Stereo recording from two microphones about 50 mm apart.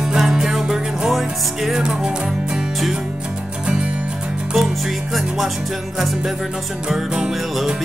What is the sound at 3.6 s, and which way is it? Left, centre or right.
Music, right.